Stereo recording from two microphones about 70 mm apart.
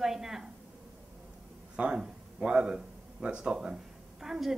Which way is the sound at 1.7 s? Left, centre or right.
Centre.